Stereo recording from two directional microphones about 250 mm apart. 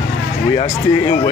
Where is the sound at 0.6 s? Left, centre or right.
Left.